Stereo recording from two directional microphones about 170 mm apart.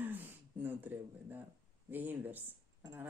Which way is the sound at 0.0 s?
10° right (ahead or behind).